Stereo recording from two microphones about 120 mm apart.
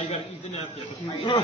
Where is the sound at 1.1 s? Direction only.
50° left (ahead or behind).